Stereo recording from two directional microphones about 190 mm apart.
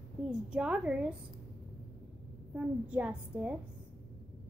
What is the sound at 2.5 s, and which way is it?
A woman's voice, 5° right (ahead or behind).